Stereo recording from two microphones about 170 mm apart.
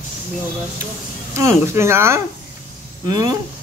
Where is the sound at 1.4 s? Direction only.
15° right (ahead or behind).